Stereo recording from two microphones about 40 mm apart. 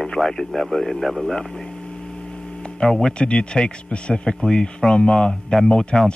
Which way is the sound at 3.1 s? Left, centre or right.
Left.